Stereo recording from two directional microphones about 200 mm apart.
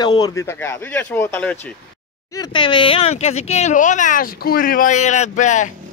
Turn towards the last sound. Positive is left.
turn(degrees=35)  # may be behind; listen again after turning